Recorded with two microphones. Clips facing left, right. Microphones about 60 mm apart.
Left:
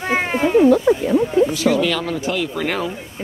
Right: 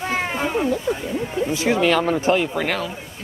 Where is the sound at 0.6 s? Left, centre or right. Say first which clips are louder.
Left 9 dB; left.